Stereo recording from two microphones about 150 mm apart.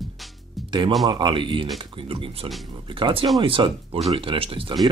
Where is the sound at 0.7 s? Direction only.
30° right (ahead or behind).